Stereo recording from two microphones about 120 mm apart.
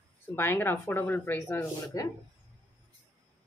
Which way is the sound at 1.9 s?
30° left (ahead or behind).